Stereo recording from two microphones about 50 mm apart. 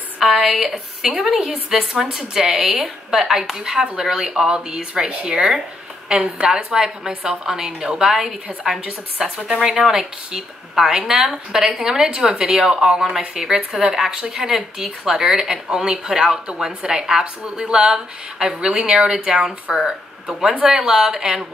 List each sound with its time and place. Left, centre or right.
0.2 s a woman's voice: centre